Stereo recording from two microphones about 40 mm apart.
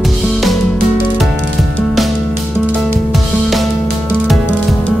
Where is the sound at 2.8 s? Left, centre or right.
Centre.